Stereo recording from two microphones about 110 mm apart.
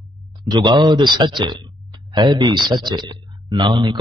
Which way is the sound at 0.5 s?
45° right (ahead or behind).